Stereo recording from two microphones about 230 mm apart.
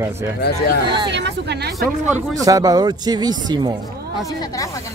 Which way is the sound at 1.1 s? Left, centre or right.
Right.